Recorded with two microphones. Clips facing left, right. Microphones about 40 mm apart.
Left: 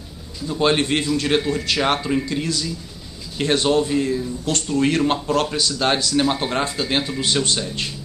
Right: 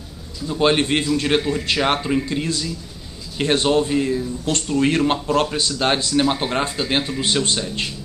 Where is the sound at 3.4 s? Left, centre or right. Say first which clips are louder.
Right 1 dB; centre.